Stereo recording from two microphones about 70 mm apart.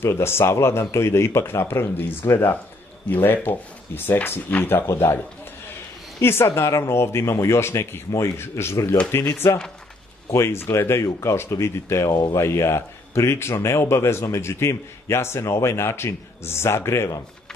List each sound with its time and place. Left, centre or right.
0.0 s speech: left
4.8 s speech: left
12.1 s speech: left
12.4 s speech: left